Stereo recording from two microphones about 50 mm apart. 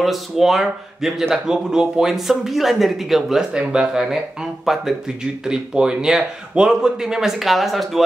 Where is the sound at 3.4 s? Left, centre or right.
Centre.